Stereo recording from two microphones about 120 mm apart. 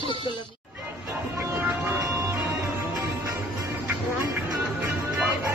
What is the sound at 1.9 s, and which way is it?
Music, 30° right (ahead or behind).